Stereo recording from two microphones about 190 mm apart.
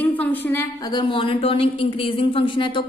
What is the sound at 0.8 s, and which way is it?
A man's voice, 25° left (ahead or behind).